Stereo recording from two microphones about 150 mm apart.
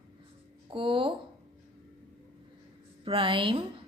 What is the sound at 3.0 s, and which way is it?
Speech, 35° right (ahead or behind).